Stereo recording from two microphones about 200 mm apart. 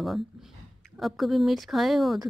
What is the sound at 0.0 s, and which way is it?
Speech, centre (ahead or behind).